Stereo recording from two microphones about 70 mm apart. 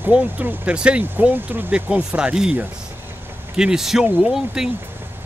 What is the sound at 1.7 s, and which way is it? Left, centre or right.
Speech, centre.